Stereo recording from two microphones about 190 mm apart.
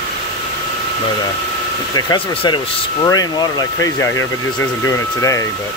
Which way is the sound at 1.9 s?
25° left (ahead or behind).